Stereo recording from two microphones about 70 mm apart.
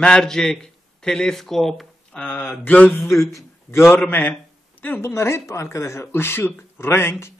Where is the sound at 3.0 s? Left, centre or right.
Left.